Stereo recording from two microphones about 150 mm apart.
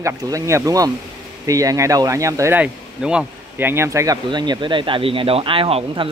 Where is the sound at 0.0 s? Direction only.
20° right (ahead or behind).